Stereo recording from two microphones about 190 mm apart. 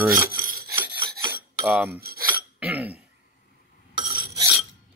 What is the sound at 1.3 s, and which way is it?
Cutlery, 10° right (ahead or behind).